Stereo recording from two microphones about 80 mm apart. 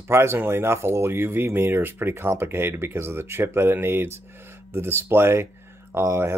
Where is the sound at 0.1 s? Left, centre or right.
Right.